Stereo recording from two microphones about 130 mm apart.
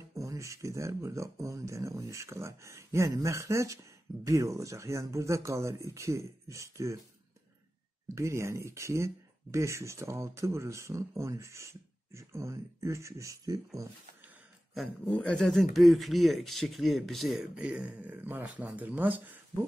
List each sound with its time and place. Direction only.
0.1 s speech: 25° right (ahead or behind)
8.1 s speech: 20° right (ahead or behind)
14.7 s speech: centre (ahead or behind)